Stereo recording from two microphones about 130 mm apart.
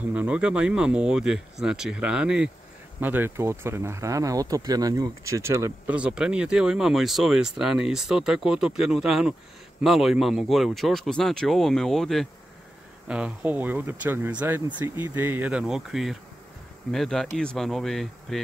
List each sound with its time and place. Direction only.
0.1 s speech: 10° right (ahead or behind)
5.9 s speech: 5° right (ahead or behind)
13.1 s speech: 10° right (ahead or behind)